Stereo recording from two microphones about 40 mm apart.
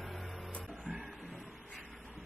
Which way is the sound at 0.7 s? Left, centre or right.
Centre.